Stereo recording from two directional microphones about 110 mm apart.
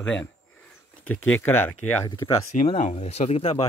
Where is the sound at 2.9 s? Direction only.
85° left; by 3.6 s 65° left (ahead or behind).